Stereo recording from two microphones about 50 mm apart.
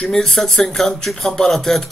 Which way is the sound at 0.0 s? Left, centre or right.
Centre.